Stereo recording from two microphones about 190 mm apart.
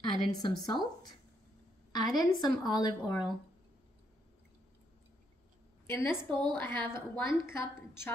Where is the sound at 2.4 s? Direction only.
20° left (ahead or behind).